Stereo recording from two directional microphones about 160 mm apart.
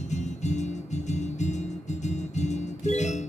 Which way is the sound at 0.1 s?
45° left (ahead or behind).